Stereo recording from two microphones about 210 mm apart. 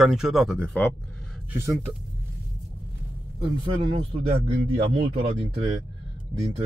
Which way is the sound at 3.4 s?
25° right (ahead or behind).